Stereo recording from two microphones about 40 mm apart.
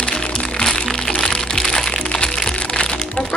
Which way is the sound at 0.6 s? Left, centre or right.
Centre.